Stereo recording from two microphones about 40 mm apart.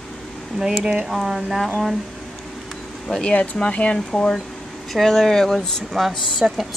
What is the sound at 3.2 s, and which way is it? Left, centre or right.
Speech, left.